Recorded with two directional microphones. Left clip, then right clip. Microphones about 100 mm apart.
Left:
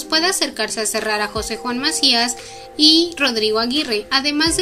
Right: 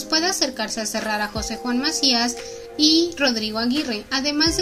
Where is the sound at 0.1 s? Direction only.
50° right (ahead or behind).